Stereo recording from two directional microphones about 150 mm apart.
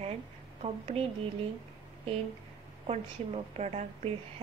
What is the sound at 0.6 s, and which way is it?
Speech, 40° right (ahead or behind).